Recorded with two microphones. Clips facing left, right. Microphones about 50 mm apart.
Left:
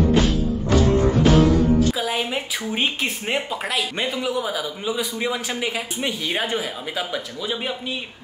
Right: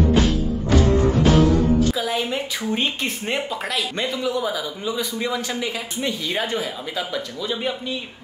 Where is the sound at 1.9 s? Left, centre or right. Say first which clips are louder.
Right 1 dB; centre.